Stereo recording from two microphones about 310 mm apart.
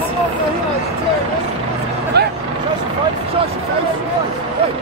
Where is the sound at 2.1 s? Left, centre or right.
Right.